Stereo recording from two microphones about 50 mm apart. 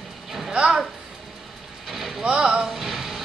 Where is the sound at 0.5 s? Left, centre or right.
Centre.